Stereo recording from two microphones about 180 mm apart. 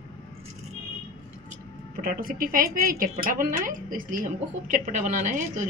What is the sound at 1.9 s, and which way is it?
A woman's voice, 50° right (ahead or behind).